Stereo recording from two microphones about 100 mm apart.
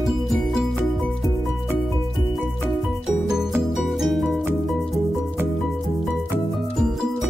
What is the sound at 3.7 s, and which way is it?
Music, centre (ahead or behind).